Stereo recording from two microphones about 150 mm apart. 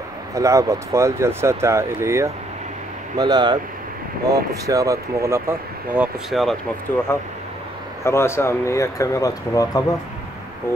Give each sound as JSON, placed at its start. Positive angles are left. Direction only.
{"t": 0.3, "sound": "speech", "side_deg": -20}
{"t": 6.3, "sound": "speech", "side_deg": 0}
{"t": 8.0, "sound": "speech", "side_deg": 15}